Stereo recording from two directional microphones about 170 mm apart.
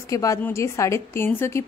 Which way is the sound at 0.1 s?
20° left (ahead or behind).